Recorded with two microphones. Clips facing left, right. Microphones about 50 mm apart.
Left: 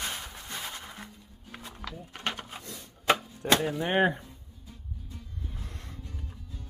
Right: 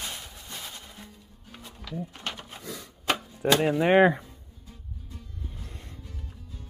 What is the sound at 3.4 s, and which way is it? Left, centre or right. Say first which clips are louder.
Speech: right 2 dB; right.